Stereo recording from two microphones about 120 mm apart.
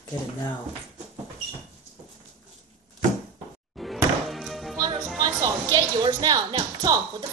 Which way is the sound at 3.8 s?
Centre (ahead or behind).